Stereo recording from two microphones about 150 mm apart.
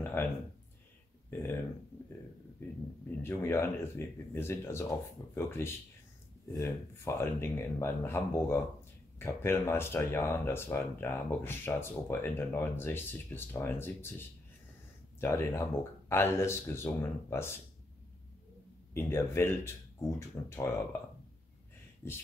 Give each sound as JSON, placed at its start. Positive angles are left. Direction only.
{"t": 0.0, "sound": "a sound", "side_deg": 15}
{"t": 1.3, "sound": "speech", "side_deg": 15}
{"t": 2.6, "sound": "speech", "side_deg": 15}
{"t": 15.1, "sound": "speech", "side_deg": 15}
{"t": 18.9, "sound": "speech", "side_deg": 15}
{"t": 22.0, "sound": "speech", "side_deg": 15}